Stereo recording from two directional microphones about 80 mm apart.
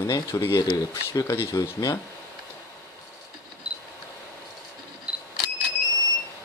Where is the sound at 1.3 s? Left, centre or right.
Left.